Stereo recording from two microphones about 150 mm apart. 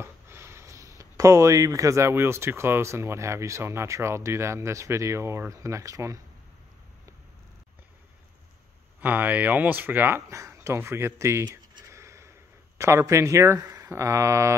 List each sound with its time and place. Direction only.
0.0 s speech: 15° right (ahead or behind)
9.0 s speech: 10° right (ahead or behind)
11.8 s a sound: 20° right (ahead or behind)